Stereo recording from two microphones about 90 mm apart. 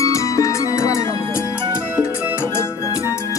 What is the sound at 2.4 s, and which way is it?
Music, 30° left (ahead or behind).